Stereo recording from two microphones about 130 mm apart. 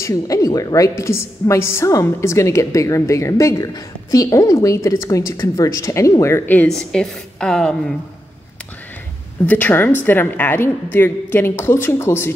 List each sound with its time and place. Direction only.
0.0 s a woman's voice: 25° left (ahead or behind); by 7.9 s 5° left (ahead or behind)
9.5 s a woman's voice: 15° left (ahead or behind)